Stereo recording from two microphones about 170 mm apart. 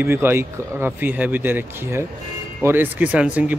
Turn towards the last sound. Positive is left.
turn(degrees=-10)  # may be behind; listen again after turning